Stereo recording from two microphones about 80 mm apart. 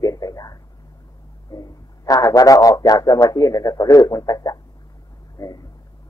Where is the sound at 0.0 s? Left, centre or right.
Left.